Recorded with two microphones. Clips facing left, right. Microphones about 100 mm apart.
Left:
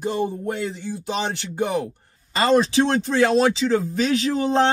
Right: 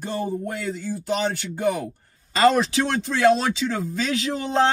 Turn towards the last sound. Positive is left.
turn(degrees=35)  # may be behind; listen again after turning